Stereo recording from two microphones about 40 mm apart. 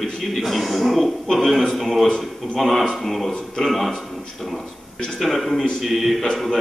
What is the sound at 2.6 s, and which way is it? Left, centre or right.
A man's voice, centre.